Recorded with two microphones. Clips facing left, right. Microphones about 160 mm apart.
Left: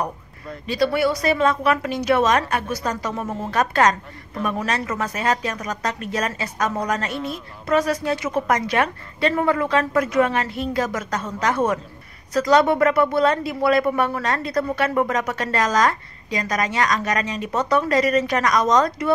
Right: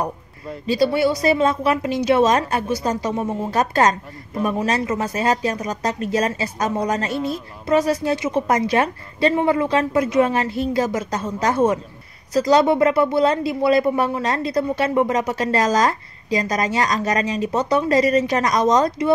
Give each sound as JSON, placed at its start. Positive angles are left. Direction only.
{"t": 0.7, "sound": "speech", "side_deg": -30}